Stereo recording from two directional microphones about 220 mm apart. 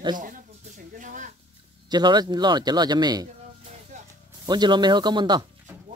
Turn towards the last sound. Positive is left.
turn(degrees=-20)  # may be behind; listen again after turning